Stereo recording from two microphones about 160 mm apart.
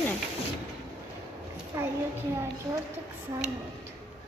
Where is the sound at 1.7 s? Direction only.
20° right (ahead or behind).